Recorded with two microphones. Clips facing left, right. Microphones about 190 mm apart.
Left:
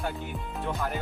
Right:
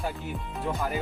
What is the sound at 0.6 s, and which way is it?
Music, 5° right (ahead or behind).